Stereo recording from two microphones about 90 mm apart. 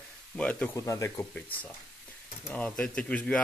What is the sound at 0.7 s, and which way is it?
Speech, 35° left (ahead or behind).